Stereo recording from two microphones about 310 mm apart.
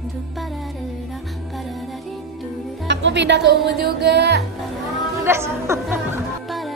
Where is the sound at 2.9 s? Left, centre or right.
Right.